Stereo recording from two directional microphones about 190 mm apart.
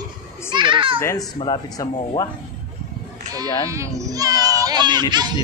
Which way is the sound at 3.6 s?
15° right (ahead or behind).